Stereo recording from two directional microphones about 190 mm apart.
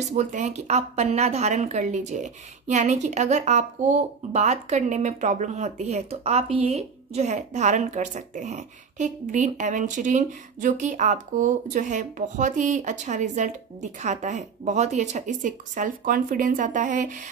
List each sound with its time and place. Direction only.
0.1 s speech: 40° right (ahead or behind)